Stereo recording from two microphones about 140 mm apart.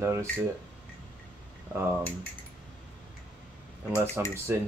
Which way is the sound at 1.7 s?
15° right (ahead or behind).